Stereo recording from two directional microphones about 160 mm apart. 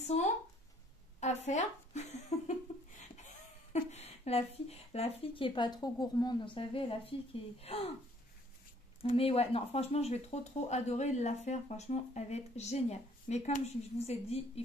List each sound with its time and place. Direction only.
0.0 s speech: 45° left (ahead or behind)
9.0 s speech: 40° left (ahead or behind)